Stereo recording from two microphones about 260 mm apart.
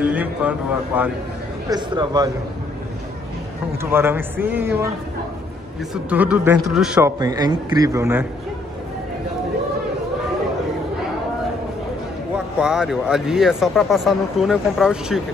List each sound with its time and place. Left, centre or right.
0.0 s speech: centre
1.7 s a man's voice: centre
3.9 s a man's voice: centre
6.0 s a man's voice: centre
12.5 s speech: centre